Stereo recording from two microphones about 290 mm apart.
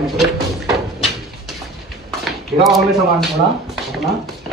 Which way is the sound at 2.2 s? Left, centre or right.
Centre.